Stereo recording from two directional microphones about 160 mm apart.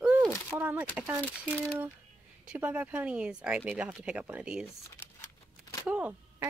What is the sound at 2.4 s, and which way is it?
Speech, 10° right (ahead or behind).